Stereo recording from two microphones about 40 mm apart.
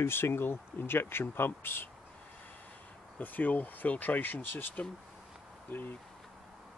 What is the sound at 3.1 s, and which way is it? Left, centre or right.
Speech, left.